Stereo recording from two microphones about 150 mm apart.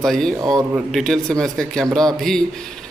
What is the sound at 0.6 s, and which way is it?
Speech, 20° right (ahead or behind).